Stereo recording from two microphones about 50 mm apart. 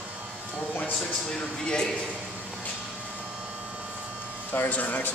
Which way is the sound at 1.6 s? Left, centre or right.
Centre.